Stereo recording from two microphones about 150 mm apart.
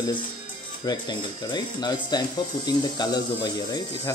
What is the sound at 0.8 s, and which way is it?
Speech, 30° left (ahead or behind).